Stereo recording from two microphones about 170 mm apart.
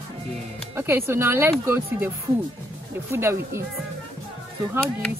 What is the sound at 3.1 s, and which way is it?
Speech, 15° right (ahead or behind).